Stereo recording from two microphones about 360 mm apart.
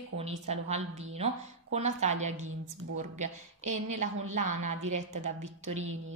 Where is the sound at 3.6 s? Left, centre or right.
Right.